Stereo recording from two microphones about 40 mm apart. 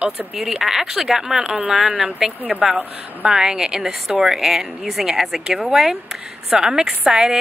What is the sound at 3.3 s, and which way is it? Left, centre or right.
Speech, centre.